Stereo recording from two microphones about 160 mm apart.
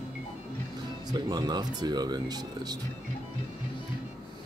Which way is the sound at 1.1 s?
25° right (ahead or behind).